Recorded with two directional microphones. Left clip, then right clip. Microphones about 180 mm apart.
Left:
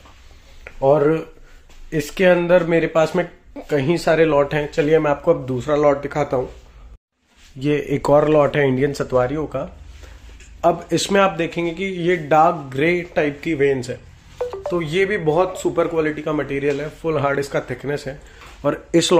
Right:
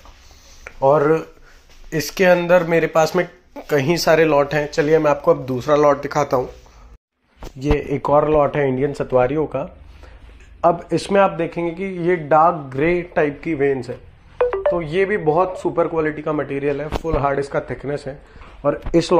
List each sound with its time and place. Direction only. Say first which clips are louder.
0.8 s speech: right 1 dB; 10° left (ahead or behind)
7.6 s speech: even; 15° left (ahead or behind)
8.1 s speech: left 1 dB; 30° left (ahead or behind)
8.5 s speech: left 1 dB; 20° left (ahead or behind)
9.1 s speech: right 2 dB; 10° right (ahead or behind)
10.6 s speech: right 1 dB; 5° left (ahead or behind)
13.5 s speech: left 1 dB; 15° left (ahead or behind)